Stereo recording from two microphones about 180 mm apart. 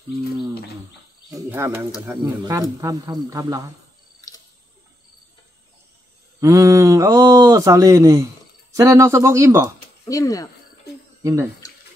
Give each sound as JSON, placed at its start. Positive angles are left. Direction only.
{"t": 1.5, "sound": "speech", "side_deg": -15}
{"t": 6.4, "sound": "speech", "side_deg": -20}
{"t": 10.0, "sound": "speech", "side_deg": 20}